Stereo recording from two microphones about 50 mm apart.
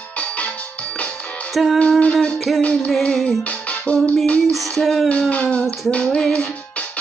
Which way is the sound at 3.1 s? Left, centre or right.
Centre.